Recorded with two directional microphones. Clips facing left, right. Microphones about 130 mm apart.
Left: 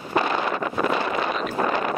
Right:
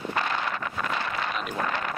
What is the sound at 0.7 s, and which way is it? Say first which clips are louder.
Wind noise: left 8 dB; 25° left (ahead or behind).